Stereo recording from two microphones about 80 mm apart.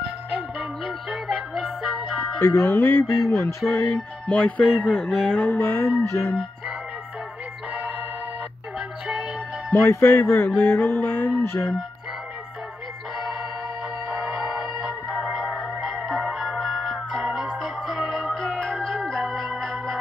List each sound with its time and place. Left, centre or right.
1.1 s music: centre
2.4 s music: left
2.7 s music: left
3.3 s music: left
3.7 s music: left
4.6 s speech: centre
4.9 s music: centre
6.0 s music: left
8.7 s music: centre
9.7 s music: left
14.0 s music: centre
17.5 s organ: centre